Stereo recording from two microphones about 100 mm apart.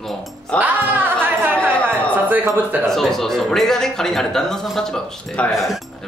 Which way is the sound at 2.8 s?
5° left (ahead or behind).